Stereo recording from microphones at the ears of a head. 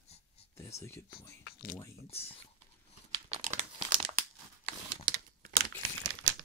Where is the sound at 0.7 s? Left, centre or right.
Left.